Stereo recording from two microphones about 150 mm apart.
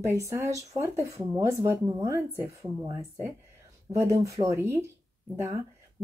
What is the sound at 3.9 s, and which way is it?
Speech, 20° right (ahead or behind).